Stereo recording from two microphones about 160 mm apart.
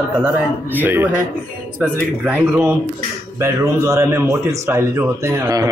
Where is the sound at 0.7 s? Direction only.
10° right (ahead or behind).